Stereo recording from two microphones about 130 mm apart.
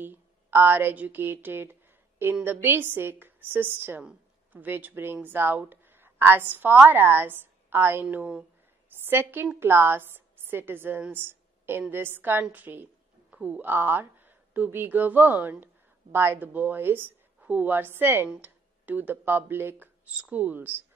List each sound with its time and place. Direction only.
0.0 s a woman's voice: 15° right (ahead or behind)